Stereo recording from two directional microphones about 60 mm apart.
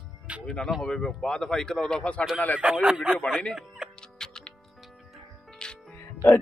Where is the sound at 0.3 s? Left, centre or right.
Centre.